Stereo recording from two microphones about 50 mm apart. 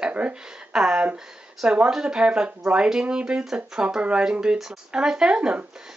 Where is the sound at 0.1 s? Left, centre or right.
Centre.